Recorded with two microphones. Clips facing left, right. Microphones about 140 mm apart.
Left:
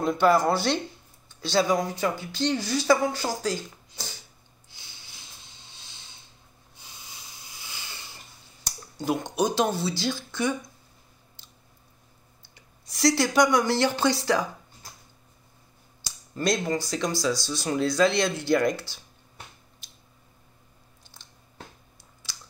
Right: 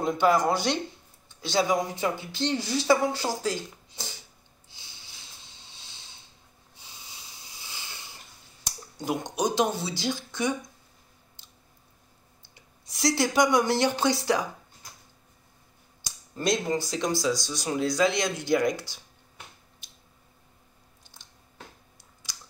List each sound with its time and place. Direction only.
0.0 s speech: 15° right (ahead or behind)
7.6 s a sound: 25° right (ahead or behind)
8.6 s speech: 15° right (ahead or behind)
12.9 s speech: 20° right (ahead or behind)
16.7 s speech: 20° right (ahead or behind)